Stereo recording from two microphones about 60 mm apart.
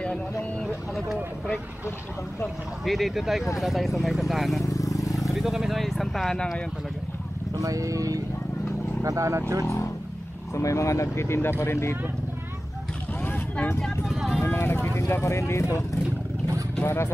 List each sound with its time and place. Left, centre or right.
0.0 s a sound: centre
2.8 s speech: centre
4.6 s vehicle: left
5.3 s speech: centre
7.5 s speech: right
9.0 s speech: right
10.5 s speech: left
13.2 s vehicle: left
14.0 s speech: centre
14.4 s speech: left
16.8 s speech: left